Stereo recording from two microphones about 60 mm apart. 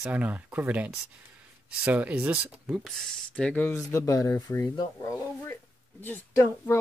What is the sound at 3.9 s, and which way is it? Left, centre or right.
Speech, left.